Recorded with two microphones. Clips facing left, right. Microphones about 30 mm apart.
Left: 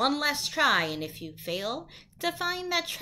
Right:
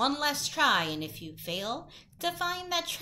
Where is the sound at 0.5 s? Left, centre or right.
Left.